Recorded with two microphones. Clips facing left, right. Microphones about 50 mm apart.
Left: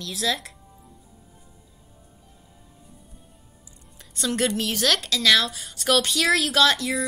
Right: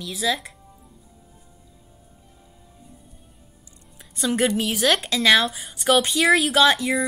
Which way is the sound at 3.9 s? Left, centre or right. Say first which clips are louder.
Right 3 dB; centre.